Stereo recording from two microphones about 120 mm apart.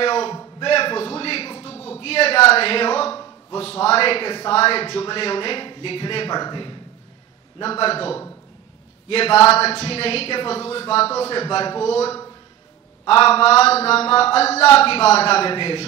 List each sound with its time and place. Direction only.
0.0 s a sound: 55° left (ahead or behind)
0.3 s a man's voice: 40° left (ahead or behind)
0.7 s a sound: 55° left (ahead or behind)
2.0 s speech: 55° left (ahead or behind); by 6.8 s 40° left (ahead or behind)
7.6 s speech: 50° left (ahead or behind)
13.0 s speech: 55° left (ahead or behind)